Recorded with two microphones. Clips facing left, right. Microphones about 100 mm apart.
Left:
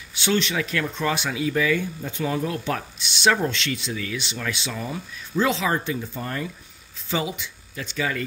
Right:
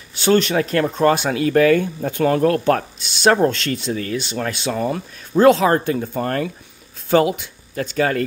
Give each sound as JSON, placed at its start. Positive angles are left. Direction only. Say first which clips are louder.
{"t": 0.1, "sound": "speech", "louder": "right 8 dB", "side_deg": -45}